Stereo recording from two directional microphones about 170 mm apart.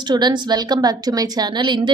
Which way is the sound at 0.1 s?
25° right (ahead or behind).